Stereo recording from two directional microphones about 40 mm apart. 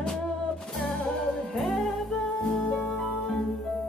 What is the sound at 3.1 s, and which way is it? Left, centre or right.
Music, centre.